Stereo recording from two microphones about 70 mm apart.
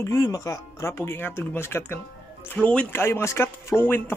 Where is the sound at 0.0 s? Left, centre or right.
Left.